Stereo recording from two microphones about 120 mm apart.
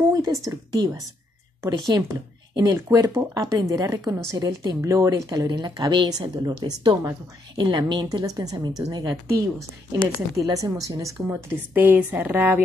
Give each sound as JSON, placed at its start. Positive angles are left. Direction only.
{"t": 0.1, "sound": "a sound", "side_deg": -25}
{"t": 0.5, "sound": "speech", "side_deg": -30}
{"t": 10.3, "sound": "speech", "side_deg": -25}